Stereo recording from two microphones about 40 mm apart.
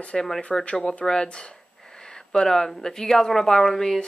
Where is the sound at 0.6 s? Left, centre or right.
Left.